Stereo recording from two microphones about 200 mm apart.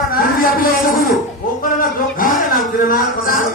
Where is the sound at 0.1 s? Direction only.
45° left (ahead or behind).